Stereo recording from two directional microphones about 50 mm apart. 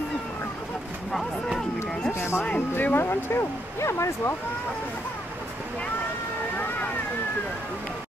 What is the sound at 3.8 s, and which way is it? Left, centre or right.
Speech, left.